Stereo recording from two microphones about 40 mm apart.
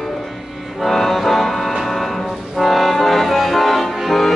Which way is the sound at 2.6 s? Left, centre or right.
Centre.